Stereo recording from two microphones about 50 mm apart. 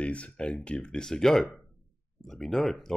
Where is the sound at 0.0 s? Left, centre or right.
Left.